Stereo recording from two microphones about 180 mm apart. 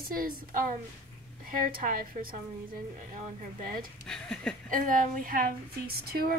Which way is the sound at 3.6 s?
50° right (ahead or behind).